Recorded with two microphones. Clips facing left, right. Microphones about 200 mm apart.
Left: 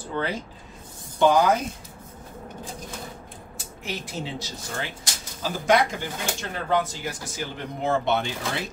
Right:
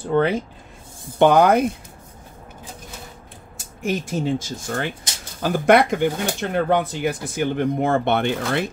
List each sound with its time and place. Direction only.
0.1 s speech: 60° right (ahead or behind)
3.5 s speech: 45° right (ahead or behind)